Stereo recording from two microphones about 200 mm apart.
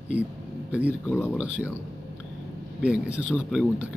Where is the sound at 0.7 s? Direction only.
5° right (ahead or behind).